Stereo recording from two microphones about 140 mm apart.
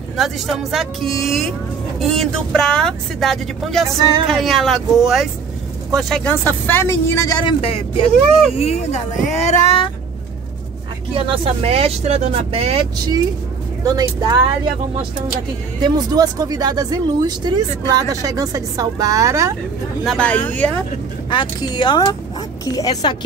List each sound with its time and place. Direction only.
0.2 s speech: centre (ahead or behind)
6.2 s speech: 15° left (ahead or behind)
7.6 s speech: 45° left (ahead or behind)
9.2 s a sound: 55° left (ahead or behind)
11.1 s speech: 40° right (ahead or behind)
13.8 s speech: 25° right (ahead or behind)
15.8 s speech: 30° right (ahead or behind)
20.1 s speech: 10° left (ahead or behind)
21.3 s speech: 35° left (ahead or behind)